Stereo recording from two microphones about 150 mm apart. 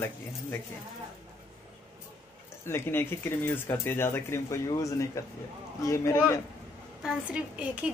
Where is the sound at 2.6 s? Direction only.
15° left (ahead or behind).